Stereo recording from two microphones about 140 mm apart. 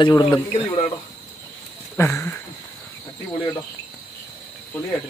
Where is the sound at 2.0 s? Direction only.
15° left (ahead or behind).